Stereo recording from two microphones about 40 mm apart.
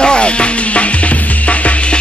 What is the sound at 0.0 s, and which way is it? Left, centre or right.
Music, left.